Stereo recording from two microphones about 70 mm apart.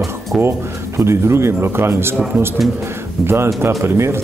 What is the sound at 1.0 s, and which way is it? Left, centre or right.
Speech, right.